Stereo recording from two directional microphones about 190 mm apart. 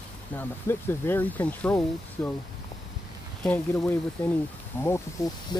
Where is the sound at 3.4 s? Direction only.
5° left (ahead or behind).